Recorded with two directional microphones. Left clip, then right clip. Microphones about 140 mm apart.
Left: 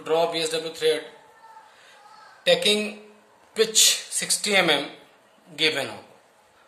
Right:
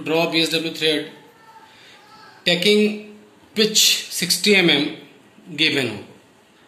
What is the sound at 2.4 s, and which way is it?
Speech, 75° left (ahead or behind).